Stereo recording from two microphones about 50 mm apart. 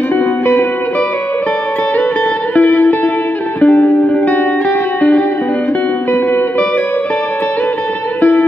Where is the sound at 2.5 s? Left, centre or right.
Left.